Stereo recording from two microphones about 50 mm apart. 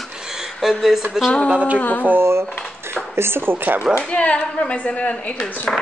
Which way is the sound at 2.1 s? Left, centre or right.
Right.